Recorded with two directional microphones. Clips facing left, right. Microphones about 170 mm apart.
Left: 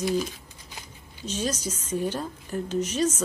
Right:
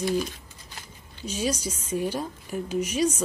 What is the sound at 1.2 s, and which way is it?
Speech, 10° right (ahead or behind).